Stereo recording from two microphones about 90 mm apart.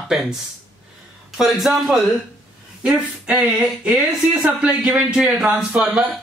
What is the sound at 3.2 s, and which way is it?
Speech, 15° right (ahead or behind).